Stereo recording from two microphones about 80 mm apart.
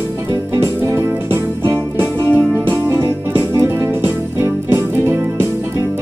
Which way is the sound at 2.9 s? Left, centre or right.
Right.